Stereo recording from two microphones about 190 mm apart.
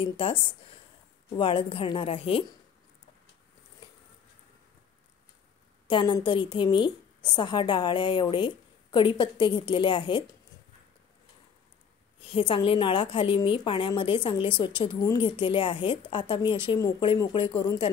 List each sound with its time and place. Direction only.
0.0 s a woman's voice: 25° left (ahead or behind)
5.9 s a woman's voice: 25° left (ahead or behind)
12.2 s a woman's voice: 30° left (ahead or behind)